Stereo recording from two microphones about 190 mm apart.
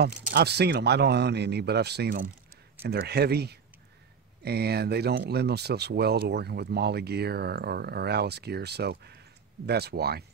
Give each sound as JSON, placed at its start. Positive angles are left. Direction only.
{"t": 0.3, "sound": "speech", "side_deg": -60}